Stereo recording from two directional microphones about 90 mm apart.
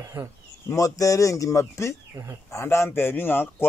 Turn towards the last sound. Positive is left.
turn(degrees=25)  # may be behind; listen again after turning